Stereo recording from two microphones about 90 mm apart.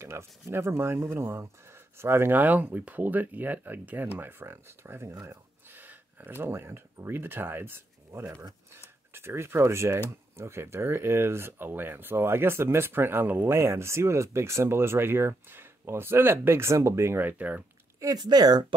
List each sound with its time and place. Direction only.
0.0 s speech: 30° right (ahead or behind)
18.0 s speech: 45° right (ahead or behind)